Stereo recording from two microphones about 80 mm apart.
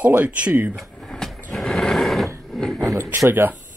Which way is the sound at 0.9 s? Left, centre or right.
Centre.